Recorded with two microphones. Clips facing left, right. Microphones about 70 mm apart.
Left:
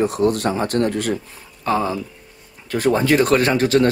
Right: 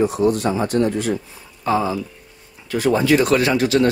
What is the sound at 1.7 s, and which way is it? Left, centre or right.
Speech, left.